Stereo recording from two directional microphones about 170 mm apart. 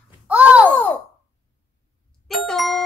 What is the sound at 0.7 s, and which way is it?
Speech, 10° left (ahead or behind).